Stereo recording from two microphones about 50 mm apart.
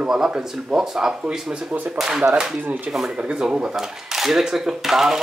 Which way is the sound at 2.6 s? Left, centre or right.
Right.